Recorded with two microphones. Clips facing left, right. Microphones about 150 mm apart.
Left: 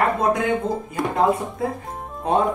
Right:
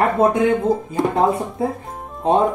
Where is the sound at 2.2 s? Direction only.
25° right (ahead or behind).